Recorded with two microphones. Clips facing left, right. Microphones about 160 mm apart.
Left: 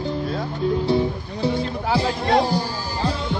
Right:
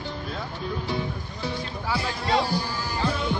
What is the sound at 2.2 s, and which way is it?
Music, 45° left (ahead or behind).